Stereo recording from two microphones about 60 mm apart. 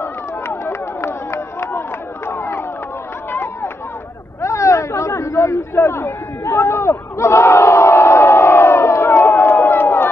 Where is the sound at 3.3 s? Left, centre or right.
Left.